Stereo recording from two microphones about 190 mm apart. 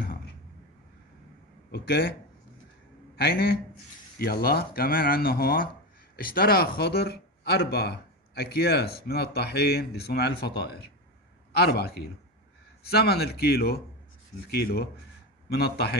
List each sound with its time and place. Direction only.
1.7 s speech: 55° left (ahead or behind)
3.2 s speech: 55° left (ahead or behind)
15.5 s speech: 55° left (ahead or behind)